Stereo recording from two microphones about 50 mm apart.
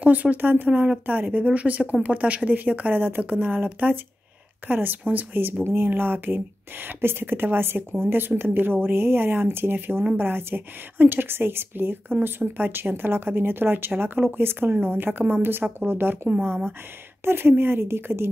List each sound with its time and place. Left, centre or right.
0.0 s speech: right
0.7 s speech: right
1.0 s speech: right
17.2 s speech: right